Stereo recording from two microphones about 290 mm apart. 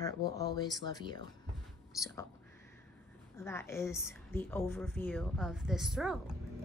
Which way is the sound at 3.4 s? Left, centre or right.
Centre.